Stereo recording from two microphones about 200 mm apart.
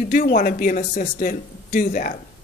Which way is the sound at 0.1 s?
45° left (ahead or behind).